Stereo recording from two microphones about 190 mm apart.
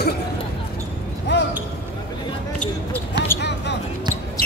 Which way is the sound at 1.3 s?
65° left (ahead or behind).